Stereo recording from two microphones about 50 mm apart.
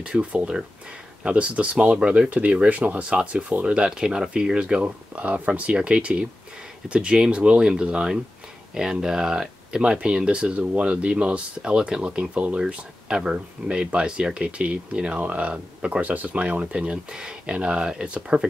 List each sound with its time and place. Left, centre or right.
0.0 s speech: right
3.7 s speech: centre
4.8 s speech: right
16.1 s speech: right
16.8 s speech: centre